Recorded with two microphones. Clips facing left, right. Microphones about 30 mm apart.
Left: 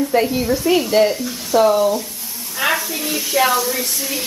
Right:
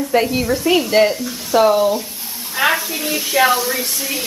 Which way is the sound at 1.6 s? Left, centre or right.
Centre.